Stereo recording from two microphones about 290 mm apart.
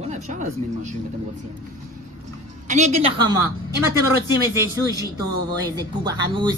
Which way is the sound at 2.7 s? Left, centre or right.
Right.